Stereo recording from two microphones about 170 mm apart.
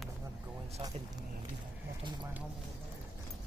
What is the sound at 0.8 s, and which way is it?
Speech, 35° right (ahead or behind).